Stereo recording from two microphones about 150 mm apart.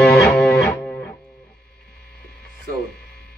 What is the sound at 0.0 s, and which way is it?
Music, 10° left (ahead or behind).